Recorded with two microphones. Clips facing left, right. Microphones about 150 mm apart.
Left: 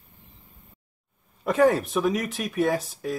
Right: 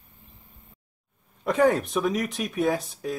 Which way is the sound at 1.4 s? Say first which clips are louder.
Left 1 dB; centre (ahead or behind).